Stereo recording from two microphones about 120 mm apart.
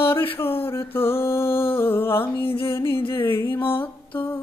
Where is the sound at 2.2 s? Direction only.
50° left (ahead or behind).